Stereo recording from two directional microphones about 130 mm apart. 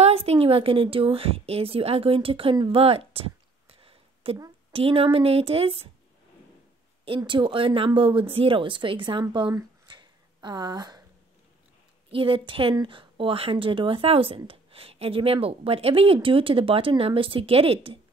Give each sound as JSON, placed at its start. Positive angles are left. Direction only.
{"t": 0.0, "sound": "a woman's voice", "side_deg": -50}
{"t": 3.8, "sound": "a sound", "side_deg": -45}
{"t": 4.7, "sound": "a woman's voice", "side_deg": -45}
{"t": 7.2, "sound": "speech", "side_deg": -35}
{"t": 9.3, "sound": "a sound", "side_deg": -35}
{"t": 12.1, "sound": "a woman's voice", "side_deg": -40}